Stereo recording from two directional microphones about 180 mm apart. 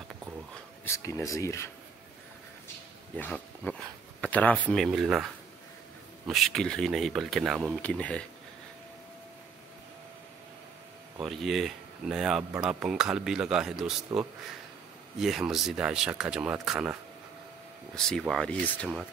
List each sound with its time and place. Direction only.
0.8 s speech: 15° left (ahead or behind)
3.2 s speech: 10° left (ahead or behind)
11.1 s speech: centre (ahead or behind)